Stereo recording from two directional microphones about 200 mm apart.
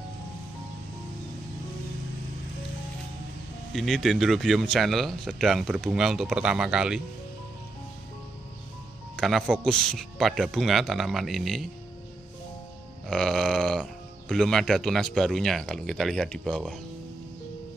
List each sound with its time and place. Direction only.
3.7 s speech: centre (ahead or behind)
9.1 s speech: centre (ahead or behind)
13.1 s speech: centre (ahead or behind)